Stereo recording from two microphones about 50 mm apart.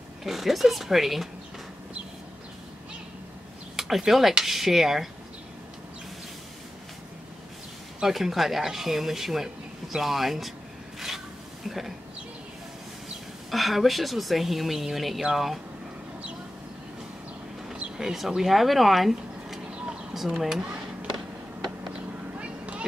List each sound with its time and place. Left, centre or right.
0.2 s a woman's voice: centre
3.7 s a woman's voice: centre
8.0 s a woman's voice: centre
11.6 s speech: centre
13.5 s a woman's voice: centre
17.9 s a woman's voice: centre
22.4 s vehicle: right